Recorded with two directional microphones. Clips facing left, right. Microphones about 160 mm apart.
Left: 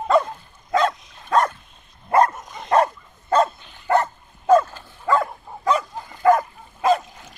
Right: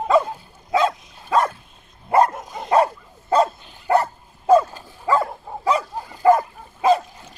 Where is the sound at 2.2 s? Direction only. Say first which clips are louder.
Right 3 dB; 55° right (ahead or behind).